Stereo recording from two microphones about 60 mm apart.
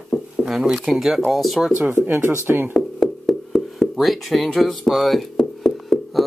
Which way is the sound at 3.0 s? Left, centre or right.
Centre.